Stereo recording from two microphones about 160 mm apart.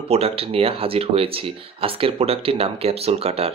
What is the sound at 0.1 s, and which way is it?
Speech, 40° right (ahead or behind).